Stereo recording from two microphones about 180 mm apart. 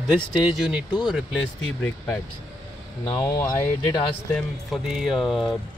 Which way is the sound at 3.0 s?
20° left (ahead or behind).